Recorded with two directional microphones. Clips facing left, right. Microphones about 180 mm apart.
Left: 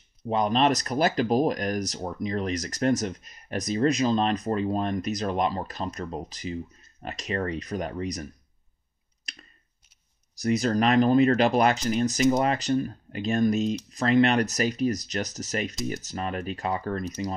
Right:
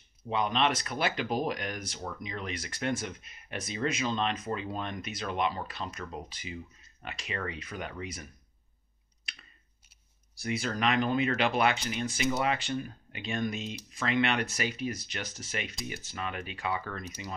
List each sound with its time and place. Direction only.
0.3 s speech: 40° left (ahead or behind)
9.3 s a sound: 40° left (ahead or behind)
10.3 s speech: 40° left (ahead or behind)